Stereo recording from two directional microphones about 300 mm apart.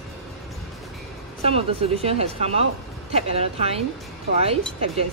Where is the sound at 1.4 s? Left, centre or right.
Centre.